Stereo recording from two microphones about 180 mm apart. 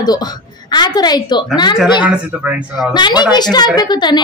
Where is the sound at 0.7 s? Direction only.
20° left (ahead or behind).